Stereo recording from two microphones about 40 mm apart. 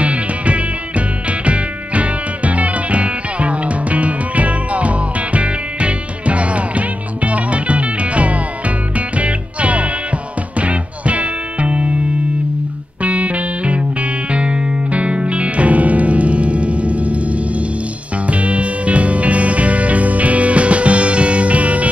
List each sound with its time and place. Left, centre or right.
0.0 s music: right
13.0 s music: right